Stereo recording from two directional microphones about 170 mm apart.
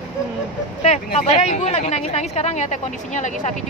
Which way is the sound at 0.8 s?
40° left (ahead or behind).